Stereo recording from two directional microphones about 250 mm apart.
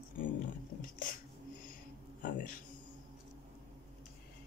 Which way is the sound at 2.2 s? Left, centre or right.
Left.